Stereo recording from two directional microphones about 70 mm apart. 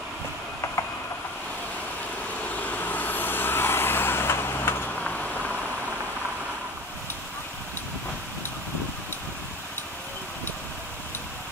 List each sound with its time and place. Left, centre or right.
2.6 s vehicle: left
5.0 s vehicle: centre